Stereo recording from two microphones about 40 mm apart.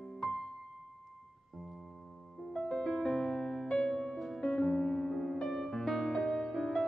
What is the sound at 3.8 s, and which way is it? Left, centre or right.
Music, left.